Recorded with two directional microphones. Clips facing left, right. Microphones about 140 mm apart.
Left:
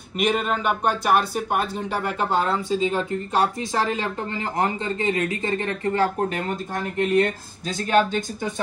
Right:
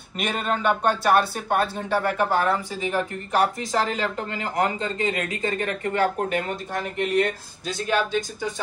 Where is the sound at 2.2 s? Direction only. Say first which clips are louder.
Right 1 dB; 25° left (ahead or behind).